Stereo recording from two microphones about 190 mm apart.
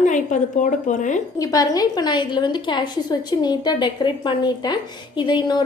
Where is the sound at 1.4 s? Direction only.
20° left (ahead or behind).